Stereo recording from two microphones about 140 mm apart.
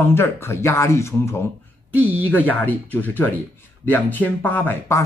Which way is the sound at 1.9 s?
10° right (ahead or behind).